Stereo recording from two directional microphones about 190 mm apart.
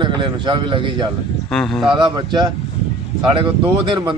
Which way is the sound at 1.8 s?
25° right (ahead or behind).